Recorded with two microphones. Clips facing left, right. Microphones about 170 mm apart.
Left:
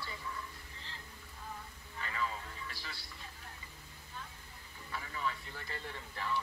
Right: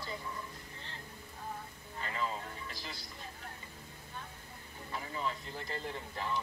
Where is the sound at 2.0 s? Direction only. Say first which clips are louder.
Right 2 dB; 30° right (ahead or behind).